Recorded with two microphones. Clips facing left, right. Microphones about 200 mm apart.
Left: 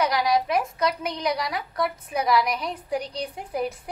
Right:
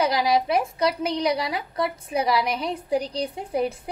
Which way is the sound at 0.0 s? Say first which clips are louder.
Right 1 dB; 30° right (ahead or behind).